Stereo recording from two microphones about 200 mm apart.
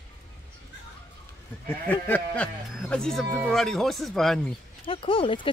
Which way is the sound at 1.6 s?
10° left (ahead or behind).